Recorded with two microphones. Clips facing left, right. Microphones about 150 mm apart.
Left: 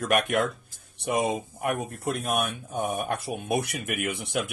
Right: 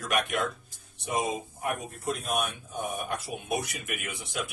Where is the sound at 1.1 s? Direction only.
65° left (ahead or behind).